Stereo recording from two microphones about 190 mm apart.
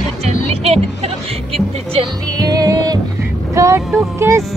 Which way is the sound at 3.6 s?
15° right (ahead or behind).